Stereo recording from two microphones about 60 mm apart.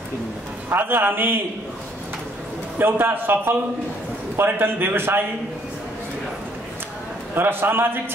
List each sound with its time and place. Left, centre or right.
0.7 s a man's voice: right
2.8 s a man's voice: right
7.3 s a man's voice: right